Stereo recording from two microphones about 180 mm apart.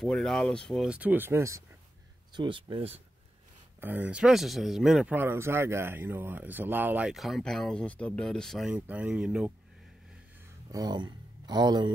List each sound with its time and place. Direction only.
0.0 s speech: centre (ahead or behind); by 1.6 s 15° right (ahead or behind)
2.3 s speech: 30° right (ahead or behind)
3.8 s speech: 10° right (ahead or behind)
10.7 s speech: 20° right (ahead or behind)